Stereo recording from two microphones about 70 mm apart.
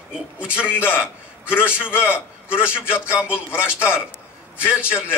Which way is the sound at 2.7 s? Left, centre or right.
Centre.